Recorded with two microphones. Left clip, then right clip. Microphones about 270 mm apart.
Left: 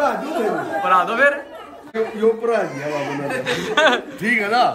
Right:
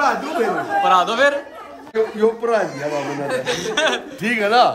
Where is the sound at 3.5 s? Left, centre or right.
Centre.